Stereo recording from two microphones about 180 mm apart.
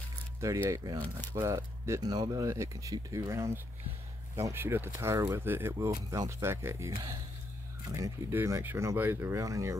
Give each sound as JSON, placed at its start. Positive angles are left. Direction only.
{"t": 0.4, "sound": "speech", "side_deg": -15}
{"t": 7.9, "sound": "speech", "side_deg": -15}